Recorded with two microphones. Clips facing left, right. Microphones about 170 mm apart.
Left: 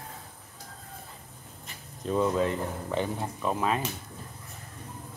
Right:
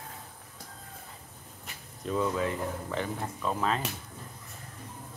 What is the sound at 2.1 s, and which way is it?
Speech, 25° left (ahead or behind).